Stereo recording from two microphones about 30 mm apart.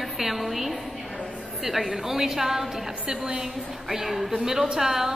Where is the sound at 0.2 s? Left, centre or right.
Centre.